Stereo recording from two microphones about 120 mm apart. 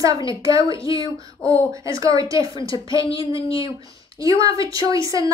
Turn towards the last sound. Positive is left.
turn(degrees=-30)  # may be behind; listen again after turning